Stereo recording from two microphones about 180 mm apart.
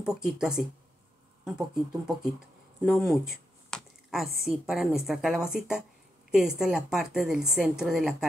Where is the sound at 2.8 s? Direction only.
Centre (ahead or behind).